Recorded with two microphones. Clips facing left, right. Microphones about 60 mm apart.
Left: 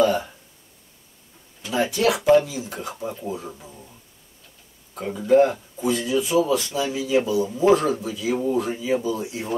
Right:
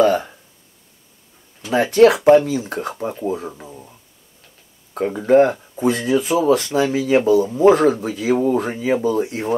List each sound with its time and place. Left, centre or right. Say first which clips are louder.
0.0 s a sound: right 4 dB; right
1.7 s speech: right 9 dB; right
4.9 s speech: right 4 dB; right